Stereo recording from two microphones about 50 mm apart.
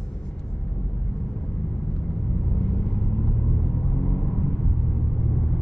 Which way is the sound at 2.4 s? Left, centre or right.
Centre.